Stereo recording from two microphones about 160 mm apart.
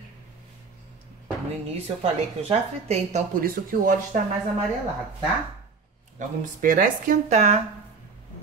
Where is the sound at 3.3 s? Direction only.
65° right (ahead or behind).